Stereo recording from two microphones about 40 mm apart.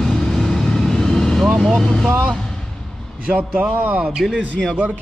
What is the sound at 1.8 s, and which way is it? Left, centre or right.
Speech, centre.